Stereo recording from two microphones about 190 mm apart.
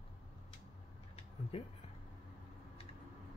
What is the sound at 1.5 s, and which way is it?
Speech, 30° left (ahead or behind).